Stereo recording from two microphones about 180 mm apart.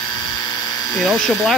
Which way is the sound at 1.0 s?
Centre (ahead or behind).